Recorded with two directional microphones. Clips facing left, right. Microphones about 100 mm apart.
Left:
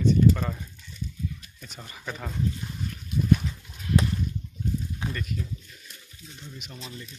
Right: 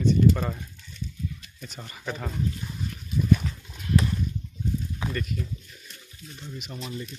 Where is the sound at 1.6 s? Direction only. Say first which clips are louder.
Right 4 dB; 5° left (ahead or behind).